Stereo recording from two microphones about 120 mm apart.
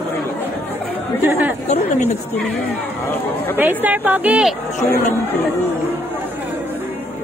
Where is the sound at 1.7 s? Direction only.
85° left.